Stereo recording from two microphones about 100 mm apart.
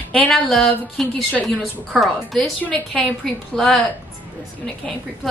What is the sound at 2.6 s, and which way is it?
A woman's voice, 15° left (ahead or behind).